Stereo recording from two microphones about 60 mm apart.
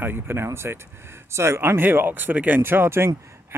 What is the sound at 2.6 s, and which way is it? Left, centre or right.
Speech, right.